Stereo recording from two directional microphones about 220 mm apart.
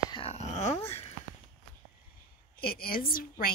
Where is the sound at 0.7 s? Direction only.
10° left (ahead or behind).